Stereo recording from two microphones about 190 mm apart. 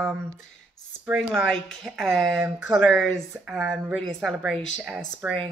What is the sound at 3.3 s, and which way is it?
Speech, 10° right (ahead or behind).